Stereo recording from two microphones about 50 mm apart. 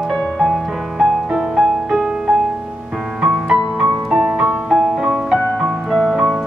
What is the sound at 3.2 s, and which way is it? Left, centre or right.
Music, centre.